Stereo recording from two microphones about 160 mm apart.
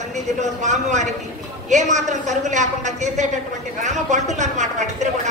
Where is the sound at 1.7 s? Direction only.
50° right (ahead or behind).